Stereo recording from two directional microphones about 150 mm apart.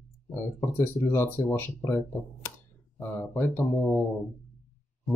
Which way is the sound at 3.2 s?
15° left (ahead or behind).